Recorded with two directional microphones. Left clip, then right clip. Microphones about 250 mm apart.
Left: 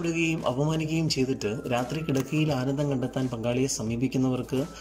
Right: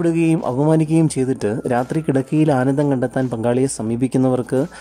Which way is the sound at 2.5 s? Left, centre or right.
Right.